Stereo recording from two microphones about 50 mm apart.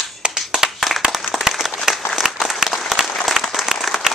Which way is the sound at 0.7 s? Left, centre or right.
Centre.